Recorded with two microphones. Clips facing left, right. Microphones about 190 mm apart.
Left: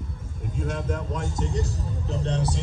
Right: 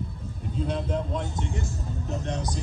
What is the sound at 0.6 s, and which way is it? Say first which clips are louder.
Speech: right 1 dB; 45° left (ahead or behind).